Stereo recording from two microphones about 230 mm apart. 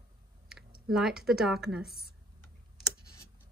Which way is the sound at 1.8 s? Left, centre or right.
Left.